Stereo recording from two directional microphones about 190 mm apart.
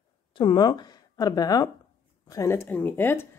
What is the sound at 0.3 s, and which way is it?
Speech, 25° left (ahead or behind).